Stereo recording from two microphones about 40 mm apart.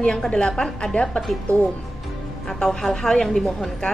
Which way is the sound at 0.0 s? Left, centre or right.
Left.